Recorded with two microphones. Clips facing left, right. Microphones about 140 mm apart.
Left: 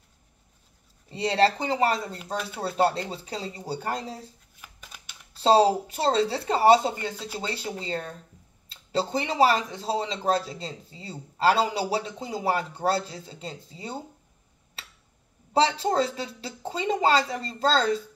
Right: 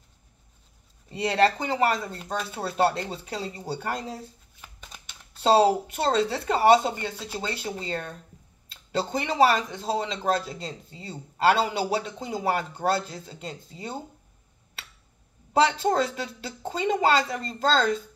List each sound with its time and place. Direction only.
1.0 s speech: 25° left (ahead or behind)
5.4 s a man's voice: 30° left (ahead or behind)
15.5 s a man's voice: 30° left (ahead or behind)